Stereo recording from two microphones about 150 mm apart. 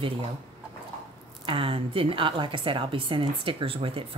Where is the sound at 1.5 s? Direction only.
35° right (ahead or behind).